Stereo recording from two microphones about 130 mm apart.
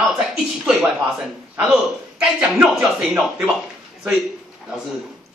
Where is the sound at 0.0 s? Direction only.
Centre (ahead or behind).